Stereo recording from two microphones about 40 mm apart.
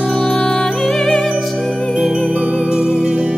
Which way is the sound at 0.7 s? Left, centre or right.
Centre.